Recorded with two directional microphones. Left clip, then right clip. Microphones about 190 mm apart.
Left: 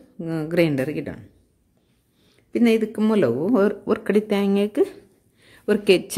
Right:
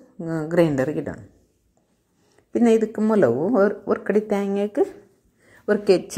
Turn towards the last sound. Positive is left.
turn(degrees=30)  # may be behind; listen again after turning